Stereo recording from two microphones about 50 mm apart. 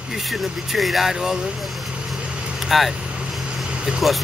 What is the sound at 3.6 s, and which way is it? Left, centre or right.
Vehicle, centre.